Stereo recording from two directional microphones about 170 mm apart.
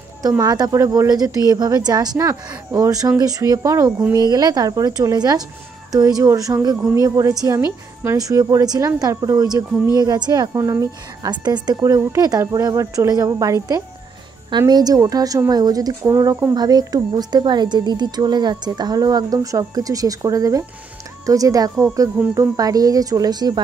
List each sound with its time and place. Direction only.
0.4 s speech: 25° right (ahead or behind)